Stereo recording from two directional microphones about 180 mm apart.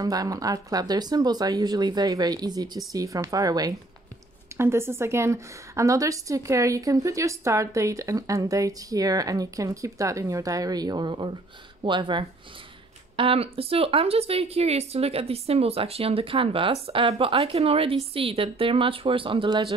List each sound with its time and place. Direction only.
0.0 s a woman's voice: 20° right (ahead or behind)